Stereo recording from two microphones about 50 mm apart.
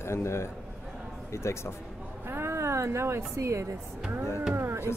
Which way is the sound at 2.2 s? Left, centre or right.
Right.